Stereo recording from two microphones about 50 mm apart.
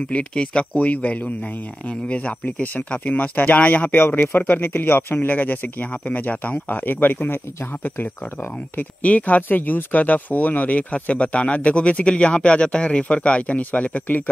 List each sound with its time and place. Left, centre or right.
0.1 s speech: left
9.0 s speech: left